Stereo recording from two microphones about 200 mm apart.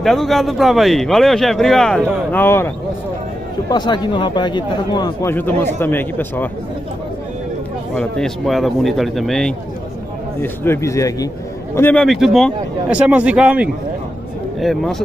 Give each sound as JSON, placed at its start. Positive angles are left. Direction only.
{"t": 0.0, "sound": "speech", "side_deg": 0}
{"t": 3.7, "sound": "speech", "side_deg": 20}
{"t": 5.3, "sound": "a man's voice", "side_deg": 10}
{"t": 7.9, "sound": "a man's voice", "side_deg": 5}